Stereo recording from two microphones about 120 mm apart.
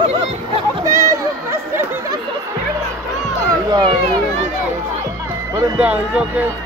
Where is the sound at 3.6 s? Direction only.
35° right (ahead or behind).